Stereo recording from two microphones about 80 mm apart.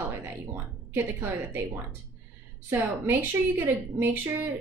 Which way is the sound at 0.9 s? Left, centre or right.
Right.